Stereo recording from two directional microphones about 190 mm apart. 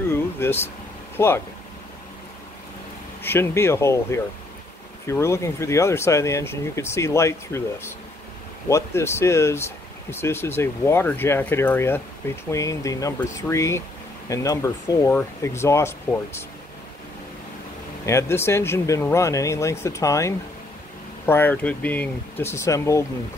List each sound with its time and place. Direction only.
0.1 s air conditioning: 10° left (ahead or behind)
1.1 s speech: 10° left (ahead or behind)
3.2 s speech: 10° left (ahead or behind)
8.6 s speech: 15° left (ahead or behind)
18.0 s speech: 15° left (ahead or behind)